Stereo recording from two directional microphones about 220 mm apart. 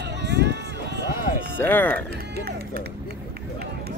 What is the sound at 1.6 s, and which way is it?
Speech, 10° left (ahead or behind).